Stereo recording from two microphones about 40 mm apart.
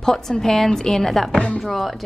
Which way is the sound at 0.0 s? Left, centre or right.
Centre.